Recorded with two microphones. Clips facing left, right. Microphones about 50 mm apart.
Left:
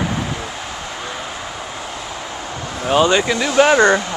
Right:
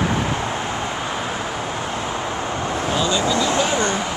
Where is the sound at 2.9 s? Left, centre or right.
Left.